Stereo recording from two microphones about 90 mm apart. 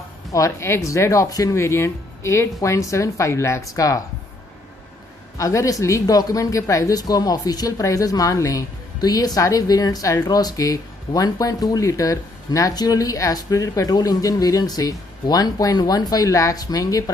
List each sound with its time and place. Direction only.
0.3 s speech: 35° left (ahead or behind)
5.4 s speech: 35° left (ahead or behind)